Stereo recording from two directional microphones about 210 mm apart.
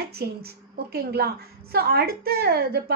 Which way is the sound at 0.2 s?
50° right (ahead or behind).